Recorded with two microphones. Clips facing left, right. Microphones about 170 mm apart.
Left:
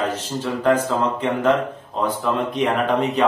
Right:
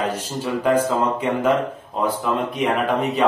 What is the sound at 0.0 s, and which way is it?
Speech, 10° right (ahead or behind).